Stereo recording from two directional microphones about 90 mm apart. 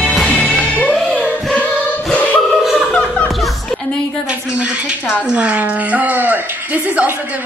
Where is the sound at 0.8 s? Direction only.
Centre (ahead or behind).